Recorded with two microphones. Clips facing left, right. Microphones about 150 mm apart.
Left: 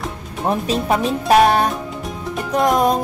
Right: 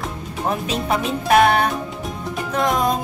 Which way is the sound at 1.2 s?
35° left (ahead or behind).